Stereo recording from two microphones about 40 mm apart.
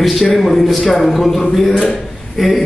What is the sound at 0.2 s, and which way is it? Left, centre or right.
A man's voice, centre.